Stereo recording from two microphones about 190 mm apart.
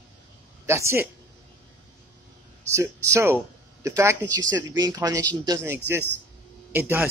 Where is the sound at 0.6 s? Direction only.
15° right (ahead or behind).